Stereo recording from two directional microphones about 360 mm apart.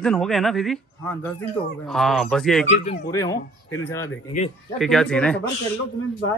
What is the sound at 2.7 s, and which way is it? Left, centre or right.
A man's voice, centre.